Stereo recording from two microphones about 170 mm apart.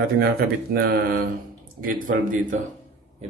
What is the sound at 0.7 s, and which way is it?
Speech, 65° right (ahead or behind).